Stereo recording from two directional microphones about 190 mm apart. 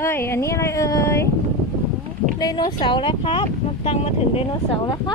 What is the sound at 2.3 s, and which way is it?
Speech, 20° left (ahead or behind).